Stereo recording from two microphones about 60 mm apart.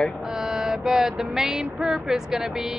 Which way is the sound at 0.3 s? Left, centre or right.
Centre.